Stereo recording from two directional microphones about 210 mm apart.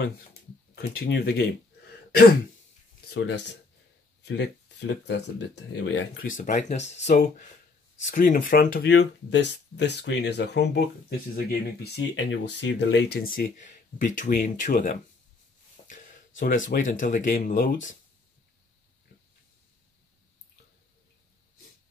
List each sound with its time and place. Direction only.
0.7 s speech: 50° left (ahead or behind)
6.2 s speech: 40° left (ahead or behind)
8.9 s speech: 55° left (ahead or behind); by 17.7 s 40° left (ahead or behind)